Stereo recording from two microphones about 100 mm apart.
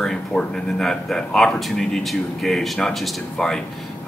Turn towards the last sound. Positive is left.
turn(degrees=0)  # may be behind; listen again after turning